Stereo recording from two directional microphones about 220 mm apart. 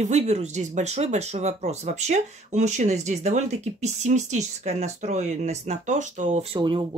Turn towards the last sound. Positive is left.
turn(degrees=-25)  # may be behind; listen again after turning